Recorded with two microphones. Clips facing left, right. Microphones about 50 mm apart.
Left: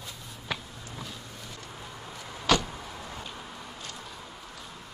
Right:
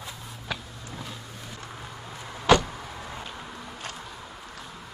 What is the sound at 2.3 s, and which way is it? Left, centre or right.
Vehicle, centre.